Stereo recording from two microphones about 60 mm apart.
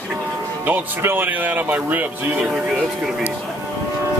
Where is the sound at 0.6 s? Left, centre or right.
Right.